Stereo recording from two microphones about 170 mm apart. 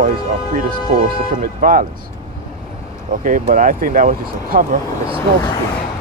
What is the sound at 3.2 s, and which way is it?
Speech, 50° right (ahead or behind).